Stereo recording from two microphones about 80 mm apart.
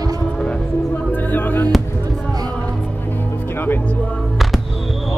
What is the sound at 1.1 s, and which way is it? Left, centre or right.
Music, left.